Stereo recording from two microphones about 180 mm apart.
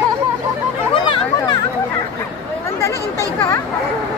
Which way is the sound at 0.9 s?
25° left (ahead or behind).